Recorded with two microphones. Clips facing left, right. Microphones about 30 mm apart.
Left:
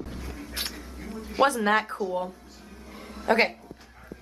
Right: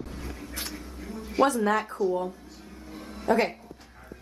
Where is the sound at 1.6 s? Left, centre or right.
Left.